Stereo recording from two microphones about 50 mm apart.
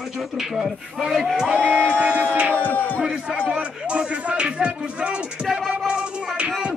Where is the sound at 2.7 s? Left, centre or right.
Left.